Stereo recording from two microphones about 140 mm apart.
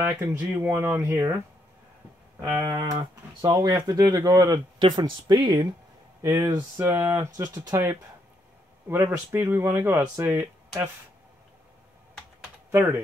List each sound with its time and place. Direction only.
0.0 s speech: 20° right (ahead or behind)
2.8 s speech: 25° right (ahead or behind)
6.8 s speech: 20° right (ahead or behind)
12.7 s speech: 15° right (ahead or behind)